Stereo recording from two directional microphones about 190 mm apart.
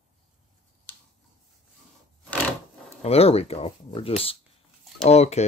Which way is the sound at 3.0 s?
30° left (ahead or behind).